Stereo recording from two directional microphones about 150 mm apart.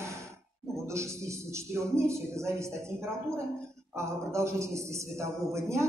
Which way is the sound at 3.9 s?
20° right (ahead or behind).